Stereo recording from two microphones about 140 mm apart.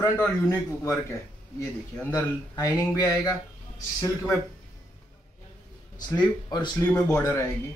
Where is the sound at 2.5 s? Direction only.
25° left (ahead or behind).